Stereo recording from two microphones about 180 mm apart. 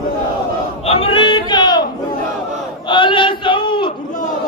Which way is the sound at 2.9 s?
25° left (ahead or behind).